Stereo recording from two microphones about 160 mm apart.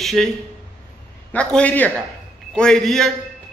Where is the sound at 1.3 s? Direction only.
10° left (ahead or behind).